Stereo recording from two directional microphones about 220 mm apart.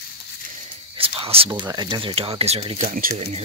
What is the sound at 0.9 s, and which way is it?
Speech, 25° right (ahead or behind).